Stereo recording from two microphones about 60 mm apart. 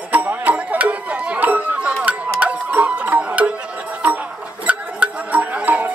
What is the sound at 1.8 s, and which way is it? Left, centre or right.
Music, centre.